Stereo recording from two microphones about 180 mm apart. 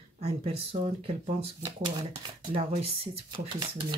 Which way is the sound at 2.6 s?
35° right (ahead or behind).